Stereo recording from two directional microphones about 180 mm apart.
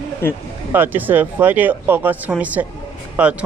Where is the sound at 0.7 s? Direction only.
10° right (ahead or behind).